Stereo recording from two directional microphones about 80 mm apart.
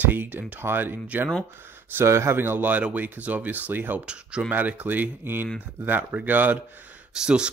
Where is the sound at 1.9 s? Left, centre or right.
Right.